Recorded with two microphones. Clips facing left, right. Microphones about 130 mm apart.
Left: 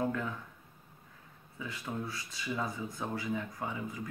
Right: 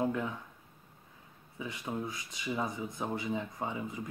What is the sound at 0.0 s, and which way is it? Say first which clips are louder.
Speech: right 1 dB; 20° right (ahead or behind).